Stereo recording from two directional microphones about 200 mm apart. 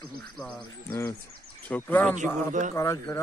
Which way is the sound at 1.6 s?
10° left (ahead or behind).